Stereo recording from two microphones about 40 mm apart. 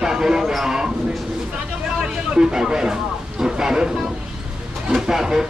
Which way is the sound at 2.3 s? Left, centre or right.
Centre.